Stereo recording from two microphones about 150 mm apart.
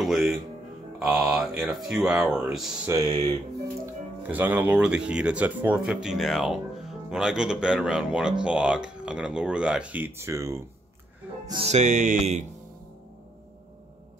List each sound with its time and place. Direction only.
0.0 s speech: centre (ahead or behind)
2.9 s speech: 25° right (ahead or behind)
4.3 s speech: 10° right (ahead or behind)
11.6 s music: 50° right (ahead or behind)